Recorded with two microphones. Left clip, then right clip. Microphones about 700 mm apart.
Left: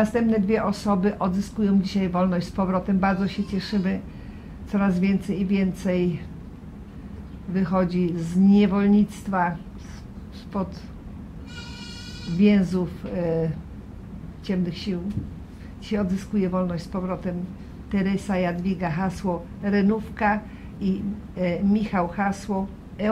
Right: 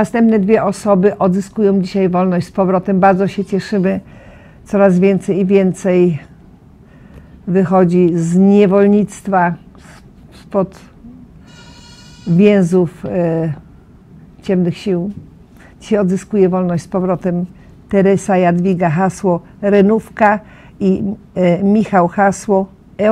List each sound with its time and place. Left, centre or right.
0.1 s speech: right
7.5 s speech: right
12.4 s a woman's voice: right
21.4 s speech: right